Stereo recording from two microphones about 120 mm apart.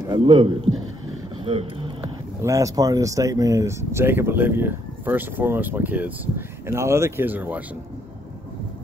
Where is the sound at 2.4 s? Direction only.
25° right (ahead or behind).